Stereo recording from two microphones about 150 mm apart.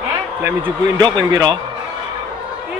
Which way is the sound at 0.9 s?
25° right (ahead or behind).